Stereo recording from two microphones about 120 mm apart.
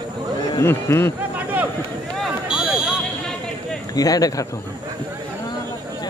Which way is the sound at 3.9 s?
30° left (ahead or behind).